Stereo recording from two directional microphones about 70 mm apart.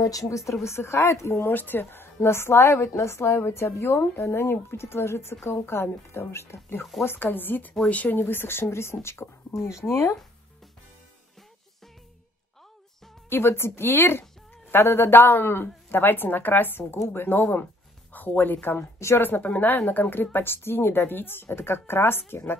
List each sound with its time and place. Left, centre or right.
0.0 s speech: left
0.7 s speech: left
1.4 s a woman's voice: left
6.8 s speech: centre
7.1 s a woman's voice: left
13.3 s a woman's voice: left
18.8 s a woman's voice: left
19.2 s a woman's voice: left